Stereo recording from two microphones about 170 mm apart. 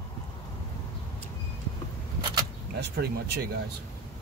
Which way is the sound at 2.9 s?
70° right (ahead or behind).